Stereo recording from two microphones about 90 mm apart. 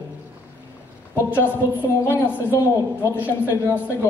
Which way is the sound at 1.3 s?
25° left (ahead or behind).